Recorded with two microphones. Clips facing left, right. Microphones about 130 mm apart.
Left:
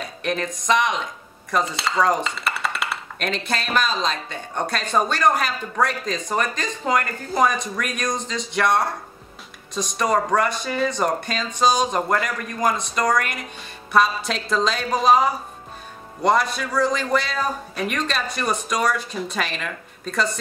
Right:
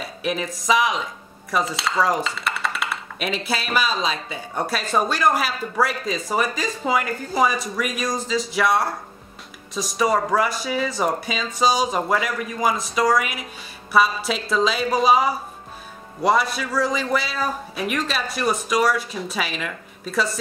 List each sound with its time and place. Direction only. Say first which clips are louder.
0.0 s speech: even; 5° right (ahead or behind)
1.5 s dishes: even; centre (ahead or behind)